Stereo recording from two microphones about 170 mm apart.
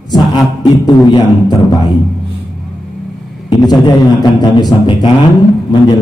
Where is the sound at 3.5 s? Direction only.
25° left (ahead or behind).